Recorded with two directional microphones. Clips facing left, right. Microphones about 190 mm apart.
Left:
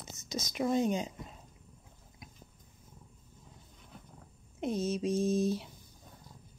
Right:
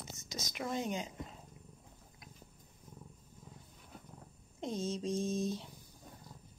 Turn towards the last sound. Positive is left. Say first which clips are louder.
# left 6 dB
turn(degrees=5)  # may be behind; listen again after turning